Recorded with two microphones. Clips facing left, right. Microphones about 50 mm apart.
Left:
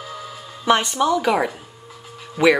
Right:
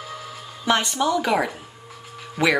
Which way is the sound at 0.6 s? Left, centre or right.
Centre.